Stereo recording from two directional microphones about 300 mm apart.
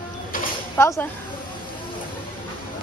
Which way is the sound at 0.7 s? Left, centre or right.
Centre.